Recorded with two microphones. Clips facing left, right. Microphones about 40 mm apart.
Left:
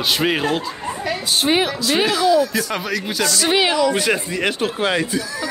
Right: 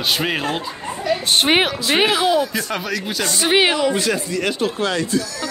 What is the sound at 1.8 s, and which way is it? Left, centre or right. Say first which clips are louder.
Speech: left 2 dB; right.